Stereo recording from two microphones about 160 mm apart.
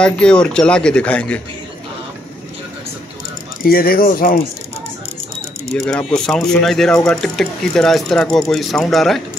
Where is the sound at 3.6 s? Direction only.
65° left (ahead or behind).